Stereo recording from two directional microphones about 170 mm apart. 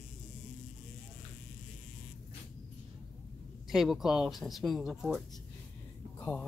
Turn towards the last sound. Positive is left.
turn(degrees=10)  # may be behind; listen again after turning